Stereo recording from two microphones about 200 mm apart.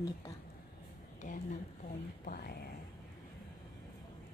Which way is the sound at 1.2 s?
40° left (ahead or behind).